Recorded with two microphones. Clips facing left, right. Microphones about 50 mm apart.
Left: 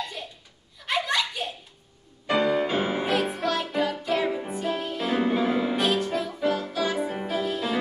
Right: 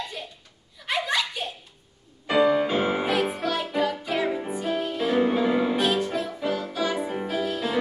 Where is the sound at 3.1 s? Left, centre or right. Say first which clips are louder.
Even; centre.